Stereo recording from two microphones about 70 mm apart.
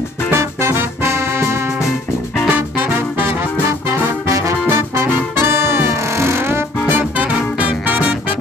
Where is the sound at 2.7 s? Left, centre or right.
Right.